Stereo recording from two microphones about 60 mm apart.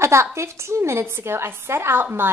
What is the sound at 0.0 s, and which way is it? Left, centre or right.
A woman's voice, right.